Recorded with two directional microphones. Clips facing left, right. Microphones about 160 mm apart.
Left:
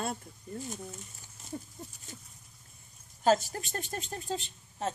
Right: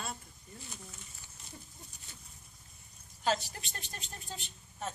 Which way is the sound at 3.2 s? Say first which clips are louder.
Left 7 dB; 45° left (ahead or behind).